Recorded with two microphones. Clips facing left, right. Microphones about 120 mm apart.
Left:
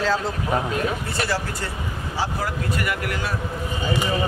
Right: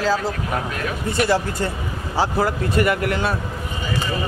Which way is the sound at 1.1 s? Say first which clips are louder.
Right 6 dB; 20° right (ahead or behind).